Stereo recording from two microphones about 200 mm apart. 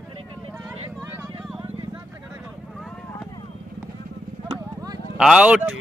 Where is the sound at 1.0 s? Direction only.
10° right (ahead or behind).